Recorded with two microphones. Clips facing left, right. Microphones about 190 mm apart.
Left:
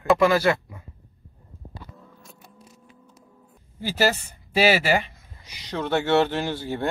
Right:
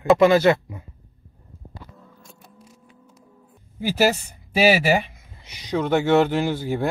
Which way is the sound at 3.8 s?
15° right (ahead or behind).